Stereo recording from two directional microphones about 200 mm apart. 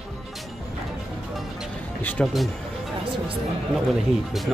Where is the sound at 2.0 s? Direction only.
5° left (ahead or behind).